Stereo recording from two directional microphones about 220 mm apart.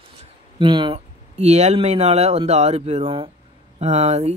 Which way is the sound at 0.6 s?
20° right (ahead or behind).